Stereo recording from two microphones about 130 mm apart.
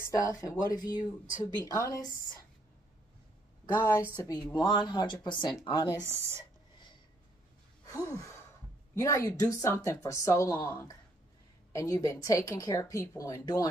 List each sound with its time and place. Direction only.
0.0 s a woman's voice: 25° left (ahead or behind)
3.7 s a woman's voice: 20° left (ahead or behind)
4.6 s a woman's voice: 40° left (ahead or behind)
5.9 s speech: 20° right (ahead or behind)
7.8 s gasp: 25° left (ahead or behind)
8.9 s a woman's voice: 25° left (ahead or behind)
11.7 s a woman's voice: 25° left (ahead or behind)